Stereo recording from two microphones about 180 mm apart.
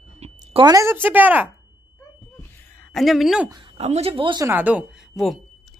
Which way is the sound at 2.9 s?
Centre (ahead or behind).